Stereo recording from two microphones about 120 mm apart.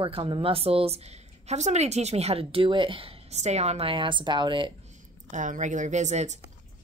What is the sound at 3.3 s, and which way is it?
Speech, 65° right (ahead or behind).